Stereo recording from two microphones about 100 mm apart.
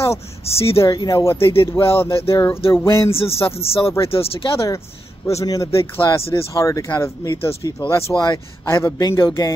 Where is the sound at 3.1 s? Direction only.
75° left (ahead or behind).